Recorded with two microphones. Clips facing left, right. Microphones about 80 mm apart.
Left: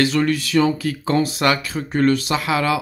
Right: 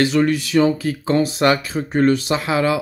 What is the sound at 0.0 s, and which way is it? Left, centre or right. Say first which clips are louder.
Speech: right 2 dB; right.